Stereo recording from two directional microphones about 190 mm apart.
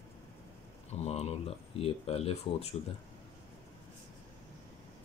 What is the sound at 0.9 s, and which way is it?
Speech, 35° left (ahead or behind).